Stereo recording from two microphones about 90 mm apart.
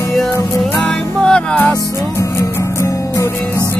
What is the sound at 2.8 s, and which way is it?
Music, 35° left (ahead or behind).